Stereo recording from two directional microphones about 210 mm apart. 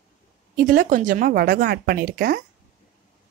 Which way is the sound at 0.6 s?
40° right (ahead or behind).